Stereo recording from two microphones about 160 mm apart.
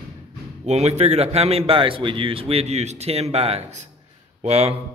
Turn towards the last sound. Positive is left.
turn(degrees=-40)  # may be behind; listen again after turning